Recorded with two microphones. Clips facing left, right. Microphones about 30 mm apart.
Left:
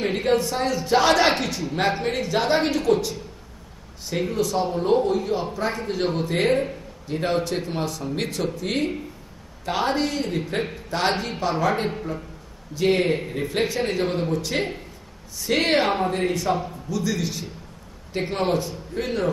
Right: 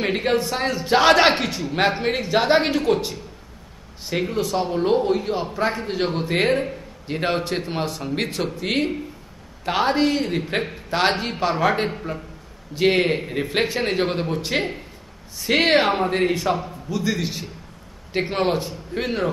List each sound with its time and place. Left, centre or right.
0.0 s speech: right
4.2 s speech: right
7.1 s speech: right
9.7 s speech: right
18.6 s speech: right